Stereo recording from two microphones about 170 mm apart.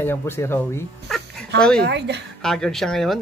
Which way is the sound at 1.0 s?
Centre (ahead or behind).